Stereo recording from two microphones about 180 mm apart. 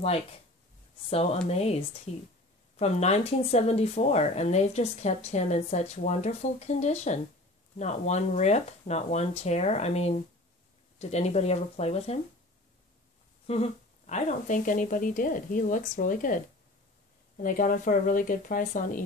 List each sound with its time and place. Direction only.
1.1 s speech: 35° left (ahead or behind)
13.5 s speech: 35° left (ahead or behind)
17.4 s speech: 50° left (ahead or behind)